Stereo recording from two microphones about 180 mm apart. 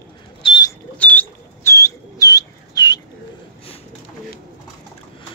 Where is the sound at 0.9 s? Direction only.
10° left (ahead or behind).